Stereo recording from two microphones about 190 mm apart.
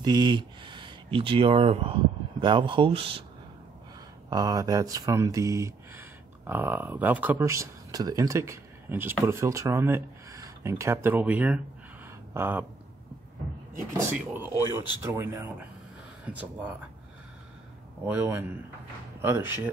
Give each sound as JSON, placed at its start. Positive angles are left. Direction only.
{"t": 0.0, "sound": "speech", "side_deg": -20}
{"t": 4.3, "sound": "speech", "side_deg": -20}
{"t": 14.1, "sound": "speech", "side_deg": -10}
{"t": 18.0, "sound": "speech", "side_deg": -10}